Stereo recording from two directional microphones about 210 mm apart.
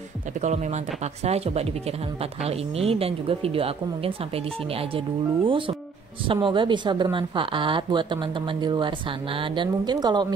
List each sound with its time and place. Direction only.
0.4 s speech: 35° right (ahead or behind)